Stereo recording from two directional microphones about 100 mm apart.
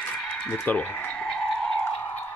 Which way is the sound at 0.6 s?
20° left (ahead or behind).